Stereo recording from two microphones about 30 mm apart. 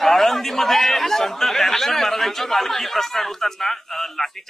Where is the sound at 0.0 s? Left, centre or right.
Centre.